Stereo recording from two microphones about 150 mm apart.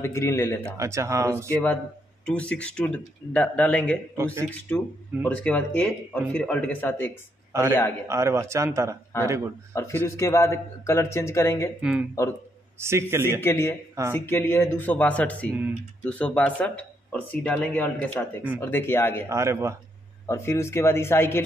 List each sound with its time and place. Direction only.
0.0 s speech: 20° left (ahead or behind)
0.7 s speech: 20° right (ahead or behind)
1.5 s speech: 10° left (ahead or behind)
4.1 s speech: 20° right (ahead or behind)
4.5 s speech: 10° left (ahead or behind)
7.5 s speech: 20° right (ahead or behind)
9.8 s speech: 20° left (ahead or behind)
11.8 s speech: 5° right (ahead or behind)
12.7 s a man's voice: 15° right (ahead or behind)
13.4 s speech: 15° left (ahead or behind)
19.2 s speech: 20° right (ahead or behind)
20.2 s speech: 20° left (ahead or behind)